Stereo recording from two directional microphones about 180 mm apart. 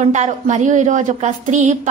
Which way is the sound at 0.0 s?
40° right (ahead or behind).